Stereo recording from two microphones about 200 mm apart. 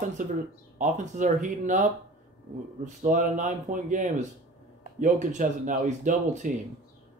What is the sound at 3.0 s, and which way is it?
Speech, 40° right (ahead or behind).